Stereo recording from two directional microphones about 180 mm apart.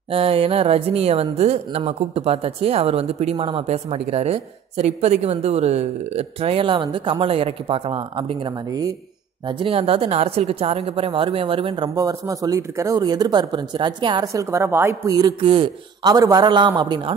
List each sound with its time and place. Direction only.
0.1 s speech: 30° right (ahead or behind)